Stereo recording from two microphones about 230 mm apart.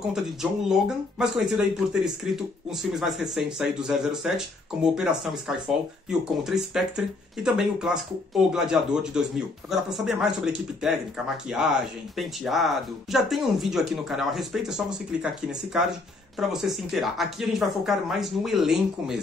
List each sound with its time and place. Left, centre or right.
0.1 s speech: centre